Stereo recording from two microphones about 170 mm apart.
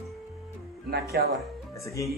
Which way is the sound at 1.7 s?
20° left (ahead or behind).